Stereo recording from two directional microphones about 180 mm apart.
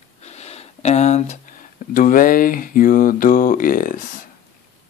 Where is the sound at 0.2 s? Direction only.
35° left (ahead or behind).